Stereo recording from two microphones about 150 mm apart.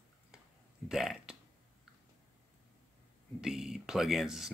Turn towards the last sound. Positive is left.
turn(degrees=-5)  # may be behind; listen again after turning